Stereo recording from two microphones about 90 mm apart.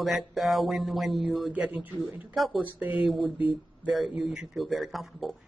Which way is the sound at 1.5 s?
15° right (ahead or behind).